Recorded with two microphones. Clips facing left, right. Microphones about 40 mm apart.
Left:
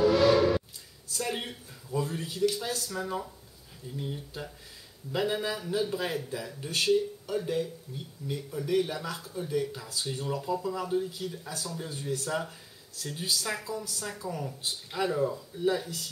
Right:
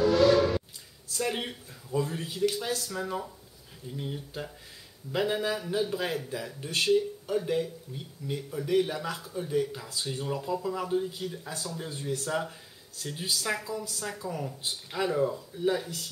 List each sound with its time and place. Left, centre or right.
0.0 s a sound: centre
1.2 s speech: centre
11.9 s speech: right
12.3 s speech: centre